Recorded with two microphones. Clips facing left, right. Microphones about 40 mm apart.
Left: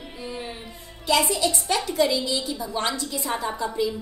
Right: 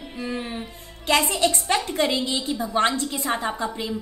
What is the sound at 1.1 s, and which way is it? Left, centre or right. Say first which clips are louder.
A woman's voice: right 1 dB; right.